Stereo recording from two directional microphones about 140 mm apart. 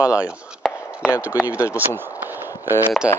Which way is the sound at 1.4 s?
20° left (ahead or behind).